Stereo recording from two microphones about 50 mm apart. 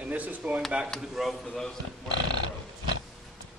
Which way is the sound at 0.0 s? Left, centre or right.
Right.